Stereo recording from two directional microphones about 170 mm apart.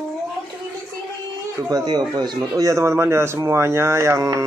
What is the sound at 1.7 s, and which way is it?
Speech, 25° right (ahead or behind).